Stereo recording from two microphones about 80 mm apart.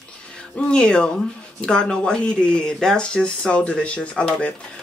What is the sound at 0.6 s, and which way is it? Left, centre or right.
Speech, centre.